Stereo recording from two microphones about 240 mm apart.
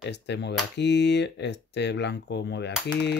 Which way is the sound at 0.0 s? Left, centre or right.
Left.